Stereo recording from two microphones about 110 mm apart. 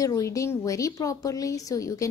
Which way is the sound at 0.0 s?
30° left (ahead or behind).